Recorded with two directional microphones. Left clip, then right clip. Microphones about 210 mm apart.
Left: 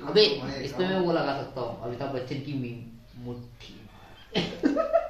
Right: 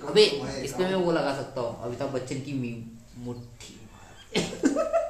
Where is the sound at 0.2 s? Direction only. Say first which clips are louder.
Right 1 dB; 10° left (ahead or behind).